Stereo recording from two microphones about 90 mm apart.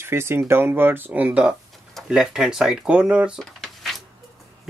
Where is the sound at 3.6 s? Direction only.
Centre (ahead or behind).